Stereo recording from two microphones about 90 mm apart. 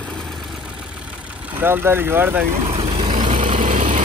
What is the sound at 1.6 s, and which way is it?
Speech, 25° right (ahead or behind).